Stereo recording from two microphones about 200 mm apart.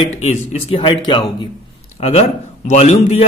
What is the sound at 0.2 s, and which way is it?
A man's voice, 30° left (ahead or behind).